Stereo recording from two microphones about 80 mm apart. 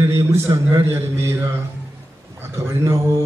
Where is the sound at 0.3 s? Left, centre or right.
Right.